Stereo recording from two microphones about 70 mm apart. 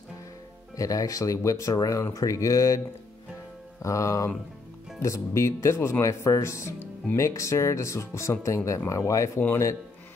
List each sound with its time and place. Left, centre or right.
0.7 s speech: left
3.8 s speech: left